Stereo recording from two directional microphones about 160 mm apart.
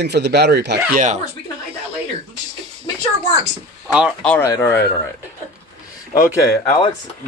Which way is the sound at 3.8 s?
5° right (ahead or behind).